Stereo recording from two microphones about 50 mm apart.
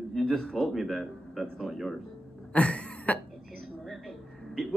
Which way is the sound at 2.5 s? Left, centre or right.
Left.